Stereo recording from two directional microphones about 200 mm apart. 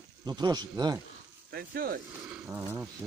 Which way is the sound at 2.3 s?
5° right (ahead or behind).